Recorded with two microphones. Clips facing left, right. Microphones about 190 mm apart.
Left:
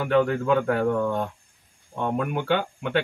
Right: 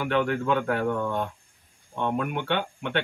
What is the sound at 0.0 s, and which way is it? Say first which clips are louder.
Speech: left 3 dB; centre (ahead or behind).